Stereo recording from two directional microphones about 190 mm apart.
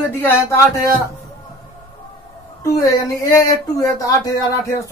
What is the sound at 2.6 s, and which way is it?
A woman's voice, 15° left (ahead or behind).